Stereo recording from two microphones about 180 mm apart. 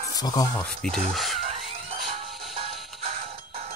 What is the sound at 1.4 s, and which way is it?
Music, 35° right (ahead or behind).